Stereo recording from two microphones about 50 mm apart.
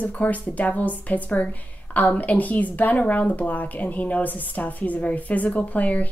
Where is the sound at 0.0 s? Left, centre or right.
Left.